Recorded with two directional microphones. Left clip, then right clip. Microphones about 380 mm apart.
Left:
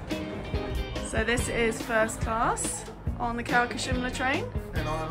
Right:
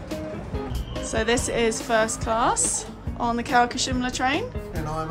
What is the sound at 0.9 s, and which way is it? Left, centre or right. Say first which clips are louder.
Speech: right 5 dB; centre.